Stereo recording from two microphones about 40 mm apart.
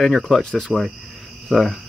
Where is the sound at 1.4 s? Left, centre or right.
Centre.